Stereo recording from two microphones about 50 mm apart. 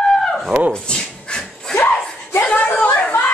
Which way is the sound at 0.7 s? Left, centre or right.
Centre.